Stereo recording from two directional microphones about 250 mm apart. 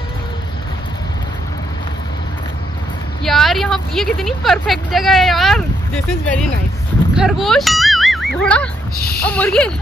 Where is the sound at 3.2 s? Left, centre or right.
Centre.